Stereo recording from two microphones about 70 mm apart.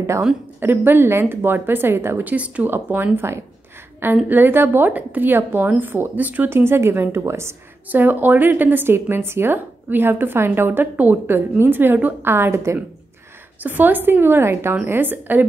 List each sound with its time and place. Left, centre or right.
0.6 s a woman's voice: right
2.2 s speech: centre
2.7 s a woman's voice: right
7.9 s a woman's voice: right
13.6 s a woman's voice: right